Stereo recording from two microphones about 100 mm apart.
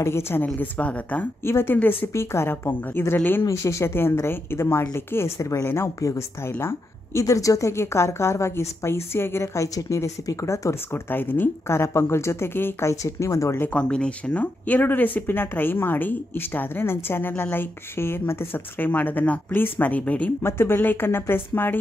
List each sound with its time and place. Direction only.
0.0 s speech: 25° left (ahead or behind)
3.4 s speech: 30° left (ahead or behind)
13.7 s speech: 10° left (ahead or behind)